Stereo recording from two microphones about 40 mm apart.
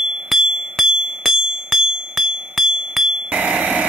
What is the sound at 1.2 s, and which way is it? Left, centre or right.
Music, centre.